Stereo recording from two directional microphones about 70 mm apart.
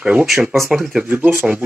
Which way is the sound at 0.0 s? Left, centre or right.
Centre.